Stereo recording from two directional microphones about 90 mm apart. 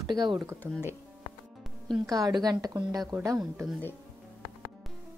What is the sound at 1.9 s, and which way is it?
Speech, 45° right (ahead or behind).